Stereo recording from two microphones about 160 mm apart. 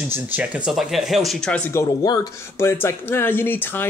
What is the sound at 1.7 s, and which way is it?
Speech, 20° left (ahead or behind).